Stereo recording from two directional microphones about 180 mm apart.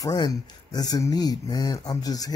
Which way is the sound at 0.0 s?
20° left (ahead or behind).